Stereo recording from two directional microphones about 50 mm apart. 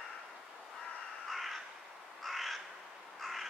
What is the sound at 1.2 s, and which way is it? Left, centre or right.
Crow, centre.